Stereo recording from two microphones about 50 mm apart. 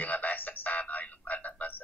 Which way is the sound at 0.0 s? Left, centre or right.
Left.